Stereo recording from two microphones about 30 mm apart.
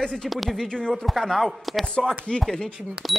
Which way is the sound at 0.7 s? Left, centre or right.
Left.